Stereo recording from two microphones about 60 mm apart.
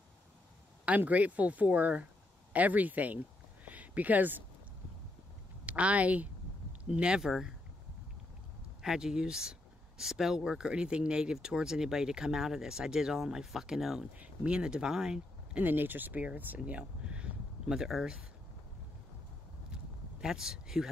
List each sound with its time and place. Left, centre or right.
0.8 s speech: right
3.6 s a sound: right
5.7 s speech: right
7.2 s speech: centre
8.8 s speech: centre
14.1 s speech: right
15.6 s speech: right; by 18.2 s centre
20.2 s speech: centre